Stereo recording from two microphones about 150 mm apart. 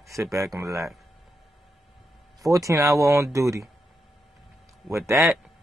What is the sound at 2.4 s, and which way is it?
Speech, 20° right (ahead or behind).